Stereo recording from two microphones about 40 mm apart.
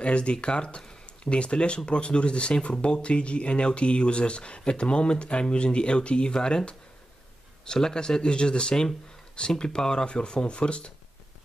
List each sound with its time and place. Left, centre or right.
0.0 s speech: left